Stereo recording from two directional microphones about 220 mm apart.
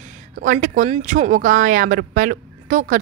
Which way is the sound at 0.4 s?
35° right (ahead or behind).